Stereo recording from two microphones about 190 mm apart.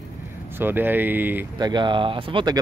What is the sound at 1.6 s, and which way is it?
Speech, 25° right (ahead or behind).